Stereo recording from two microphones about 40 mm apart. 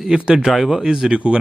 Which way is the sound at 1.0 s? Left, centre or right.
Right.